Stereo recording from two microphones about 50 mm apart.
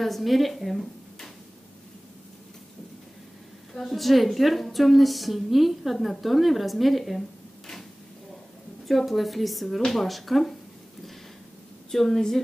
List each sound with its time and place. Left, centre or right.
0.0 s a woman's voice: centre
3.7 s a woman's voice: centre
8.8 s a woman's voice: centre
11.9 s a woman's voice: centre